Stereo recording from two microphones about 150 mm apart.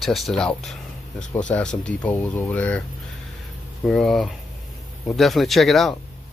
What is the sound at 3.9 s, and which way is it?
Speech, 5° left (ahead or behind).